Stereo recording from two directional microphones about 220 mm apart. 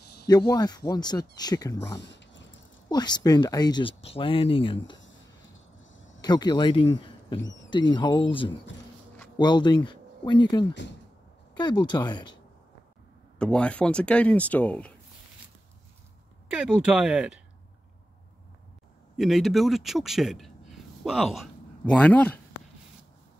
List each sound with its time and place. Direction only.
0.5 s speech: 20° left (ahead or behind)
2.0 s dog: 55° left (ahead or behind)
2.9 s speech: 20° left (ahead or behind)
6.2 s speech: 20° left (ahead or behind)
13.4 s speech: 5° left (ahead or behind)
16.4 s speech: 5° right (ahead or behind)
19.1 s speech: centre (ahead or behind)